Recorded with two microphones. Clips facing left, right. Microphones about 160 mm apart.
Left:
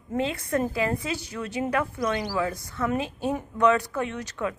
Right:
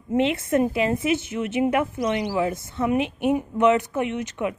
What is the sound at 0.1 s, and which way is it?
A woman's voice, 25° right (ahead or behind).